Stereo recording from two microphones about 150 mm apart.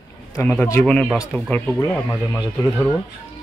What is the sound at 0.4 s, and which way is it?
Speech, 15° left (ahead or behind).